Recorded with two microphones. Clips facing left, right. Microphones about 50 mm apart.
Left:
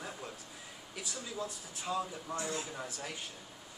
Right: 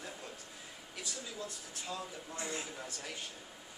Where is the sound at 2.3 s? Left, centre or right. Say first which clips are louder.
Left 3 dB; right.